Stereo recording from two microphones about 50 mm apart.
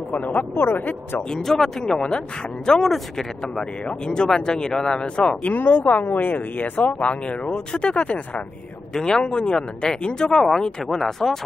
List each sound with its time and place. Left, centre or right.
0.3 s speech: left
1.3 s speech: centre
2.9 s speech: centre
3.8 s speech: centre
5.5 s speech: left
8.9 s speech: centre
10.3 s speech: centre